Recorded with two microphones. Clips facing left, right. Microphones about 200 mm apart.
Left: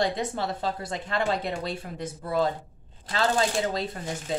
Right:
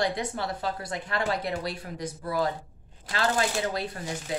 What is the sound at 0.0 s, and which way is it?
A woman's voice, 25° left (ahead or behind).